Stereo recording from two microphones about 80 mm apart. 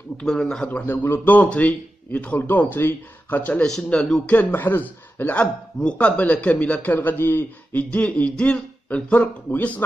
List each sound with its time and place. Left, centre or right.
0.2 s a man's voice: centre
0.7 s a man's voice: left
3.6 s a man's voice: centre